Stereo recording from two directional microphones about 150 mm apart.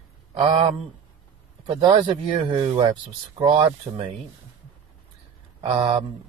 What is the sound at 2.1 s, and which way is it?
Speech, 35° right (ahead or behind).